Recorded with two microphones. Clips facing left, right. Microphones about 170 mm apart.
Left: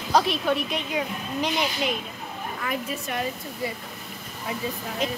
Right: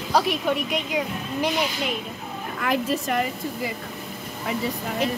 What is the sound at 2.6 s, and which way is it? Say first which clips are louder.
Speech: right 7 dB; 85° right.